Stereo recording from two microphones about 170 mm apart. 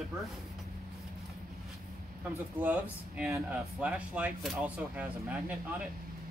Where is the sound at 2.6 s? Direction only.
10° right (ahead or behind).